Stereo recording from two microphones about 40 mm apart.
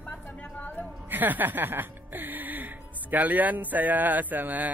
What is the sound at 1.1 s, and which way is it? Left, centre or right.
Speech, right.